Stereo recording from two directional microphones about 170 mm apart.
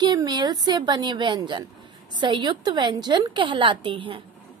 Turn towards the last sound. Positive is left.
turn(degrees=-30)  # may be behind; listen again after turning